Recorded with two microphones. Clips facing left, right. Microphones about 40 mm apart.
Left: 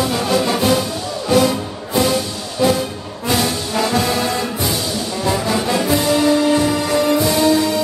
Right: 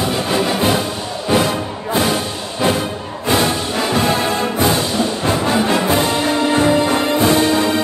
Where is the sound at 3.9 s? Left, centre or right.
Right.